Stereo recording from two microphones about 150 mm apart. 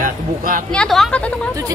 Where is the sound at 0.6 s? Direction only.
5° left (ahead or behind).